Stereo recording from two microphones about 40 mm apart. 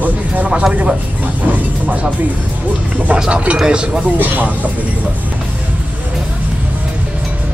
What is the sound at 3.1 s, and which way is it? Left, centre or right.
Speech, right.